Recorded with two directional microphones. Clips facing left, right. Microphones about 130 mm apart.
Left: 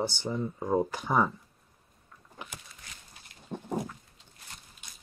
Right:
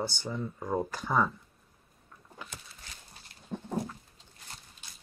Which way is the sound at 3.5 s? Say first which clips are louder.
Left 1 dB; 15° left (ahead or behind).